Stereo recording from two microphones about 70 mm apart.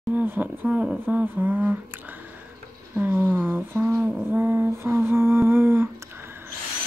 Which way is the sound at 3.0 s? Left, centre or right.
Right.